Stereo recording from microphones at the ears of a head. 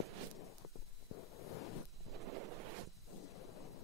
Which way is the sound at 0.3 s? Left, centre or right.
Left.